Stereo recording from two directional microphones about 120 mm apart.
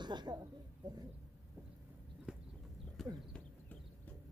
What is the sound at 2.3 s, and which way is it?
Horse, 5° right (ahead or behind).